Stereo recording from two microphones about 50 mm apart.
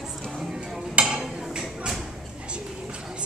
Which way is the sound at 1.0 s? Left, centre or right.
Centre.